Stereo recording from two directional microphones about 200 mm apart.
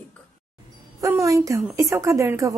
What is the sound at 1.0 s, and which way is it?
A woman's voice, 15° right (ahead or behind).